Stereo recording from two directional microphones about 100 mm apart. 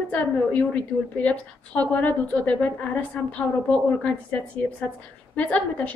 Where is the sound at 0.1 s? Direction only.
15° left (ahead or behind).